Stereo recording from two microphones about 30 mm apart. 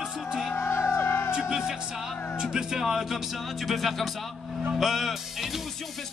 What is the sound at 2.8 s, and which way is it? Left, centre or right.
Speech, centre.